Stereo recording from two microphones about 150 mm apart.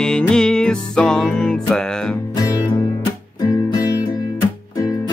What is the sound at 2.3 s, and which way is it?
Music, 25° left (ahead or behind).